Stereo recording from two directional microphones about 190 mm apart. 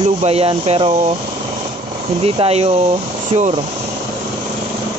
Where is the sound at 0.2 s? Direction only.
30° right (ahead or behind).